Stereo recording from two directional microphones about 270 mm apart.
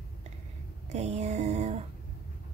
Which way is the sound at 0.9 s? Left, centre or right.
Right.